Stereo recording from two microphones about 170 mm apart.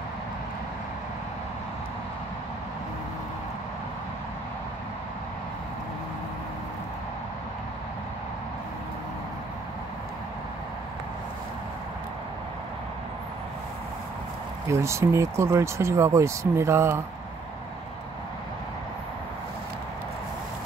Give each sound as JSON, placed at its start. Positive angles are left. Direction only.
{"t": 14.7, "sound": "speech", "side_deg": -15}